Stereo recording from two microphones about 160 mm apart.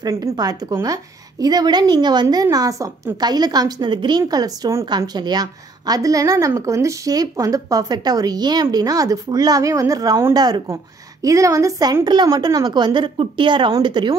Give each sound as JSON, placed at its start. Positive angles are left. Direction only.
{"t": 0.0, "sound": "a woman's voice", "side_deg": -25}